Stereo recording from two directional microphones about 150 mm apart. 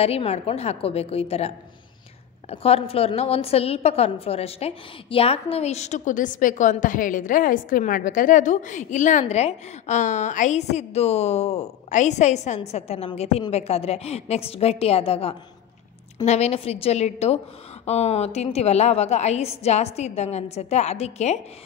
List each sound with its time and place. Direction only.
0.0 s a woman's voice: 45° left (ahead or behind)
2.5 s a woman's voice: 40° left (ahead or behind)